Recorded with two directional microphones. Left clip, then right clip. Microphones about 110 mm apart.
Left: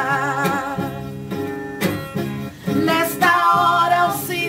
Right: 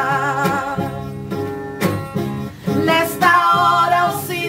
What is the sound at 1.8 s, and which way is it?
Music, 15° left (ahead or behind).